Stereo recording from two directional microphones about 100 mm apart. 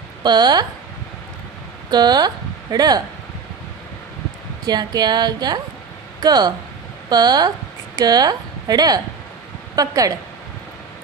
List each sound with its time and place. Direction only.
0.2 s speech: 45° right (ahead or behind)
1.9 s speech: 45° right (ahead or behind)
4.6 s a woman's voice: 45° right (ahead or behind)